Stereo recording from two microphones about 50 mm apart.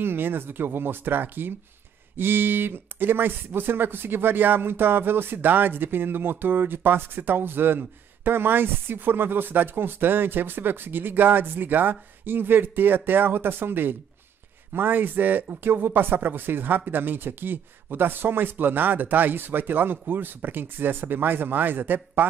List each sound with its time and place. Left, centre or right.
0.0 s speech: right